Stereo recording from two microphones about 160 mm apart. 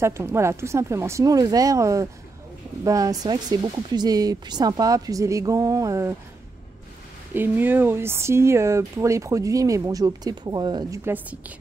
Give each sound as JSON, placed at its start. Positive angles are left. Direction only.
{"t": 0.0, "sound": "speech", "side_deg": -15}
{"t": 7.3, "sound": "speech", "side_deg": -10}
{"t": 11.1, "sound": "speech", "side_deg": -10}